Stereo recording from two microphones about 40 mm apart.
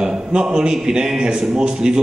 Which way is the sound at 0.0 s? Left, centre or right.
Right.